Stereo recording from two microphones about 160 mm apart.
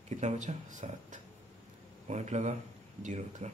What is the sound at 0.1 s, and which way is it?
Speech, 50° right (ahead or behind).